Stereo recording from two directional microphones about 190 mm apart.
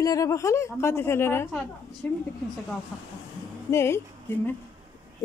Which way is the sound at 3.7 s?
15° left (ahead or behind).